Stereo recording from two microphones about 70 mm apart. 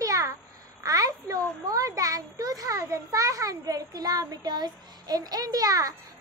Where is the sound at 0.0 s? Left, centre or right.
Right.